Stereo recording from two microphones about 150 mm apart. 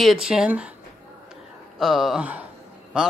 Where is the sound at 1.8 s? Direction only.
Centre (ahead or behind).